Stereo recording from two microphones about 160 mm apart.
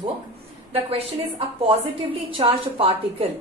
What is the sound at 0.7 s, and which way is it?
A woman's voice, 35° right (ahead or behind).